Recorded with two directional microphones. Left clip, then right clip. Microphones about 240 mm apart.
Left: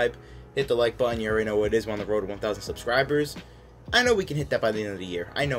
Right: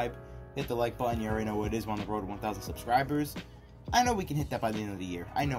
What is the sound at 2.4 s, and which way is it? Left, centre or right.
Speech, right.